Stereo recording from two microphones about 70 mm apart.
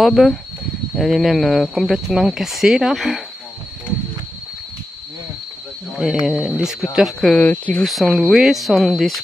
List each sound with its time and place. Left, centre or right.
0.0 s speech: centre
5.9 s speech: centre
7.3 s speech: centre
7.8 s speech: centre